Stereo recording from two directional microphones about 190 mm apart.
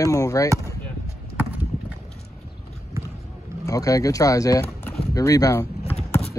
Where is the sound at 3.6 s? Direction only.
20° left (ahead or behind).